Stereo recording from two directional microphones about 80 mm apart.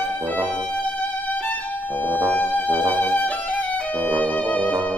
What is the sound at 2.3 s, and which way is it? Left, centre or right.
Music, left.